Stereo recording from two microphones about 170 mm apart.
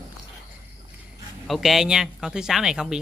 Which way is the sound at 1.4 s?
Centre (ahead or behind).